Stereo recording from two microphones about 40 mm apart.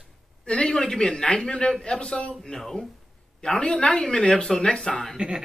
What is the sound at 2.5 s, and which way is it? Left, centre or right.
Speech, centre.